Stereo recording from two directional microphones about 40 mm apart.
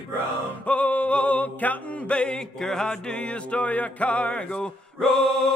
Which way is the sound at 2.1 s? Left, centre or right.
Left.